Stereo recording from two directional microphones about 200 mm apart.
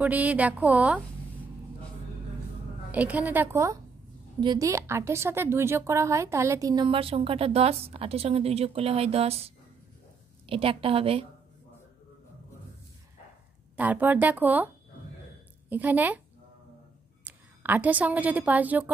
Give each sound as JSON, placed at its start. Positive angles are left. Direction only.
{"t": 0.0, "sound": "speech", "side_deg": -5}
{"t": 2.9, "sound": "a woman's voice", "side_deg": -5}
{"t": 10.4, "sound": "a woman's voice", "side_deg": -25}
{"t": 13.7, "sound": "speech", "side_deg": -10}
{"t": 15.7, "sound": "speech", "side_deg": -10}
{"t": 17.2, "sound": "a woman's voice", "side_deg": -10}